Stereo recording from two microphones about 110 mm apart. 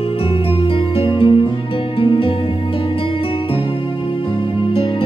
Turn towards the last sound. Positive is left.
turn(degrees=50)  # may be behind; listen again after turning